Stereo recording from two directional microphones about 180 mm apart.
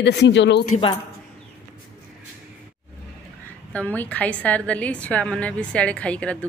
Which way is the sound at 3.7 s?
10° left (ahead or behind).